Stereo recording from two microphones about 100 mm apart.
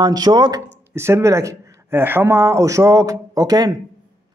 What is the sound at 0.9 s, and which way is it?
Speech, 25° right (ahead or behind).